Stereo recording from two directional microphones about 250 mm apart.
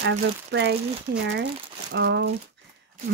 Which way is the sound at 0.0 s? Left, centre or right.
Right.